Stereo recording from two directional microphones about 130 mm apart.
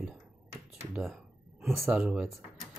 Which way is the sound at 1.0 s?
Centre (ahead or behind).